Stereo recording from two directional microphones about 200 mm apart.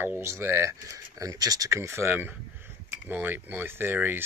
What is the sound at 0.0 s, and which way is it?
Speech, 10° right (ahead or behind).